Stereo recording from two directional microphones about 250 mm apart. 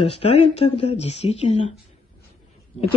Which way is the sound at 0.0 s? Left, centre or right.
Left.